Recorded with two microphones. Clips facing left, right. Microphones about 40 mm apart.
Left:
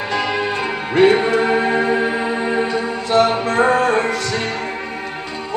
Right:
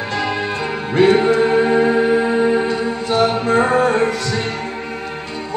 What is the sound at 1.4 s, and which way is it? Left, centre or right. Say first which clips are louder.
Music: right 3 dB; centre.